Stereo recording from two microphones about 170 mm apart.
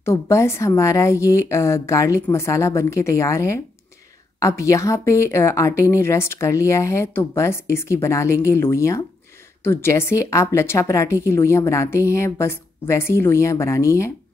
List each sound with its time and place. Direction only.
0.0 s a woman's voice: 15° left (ahead or behind)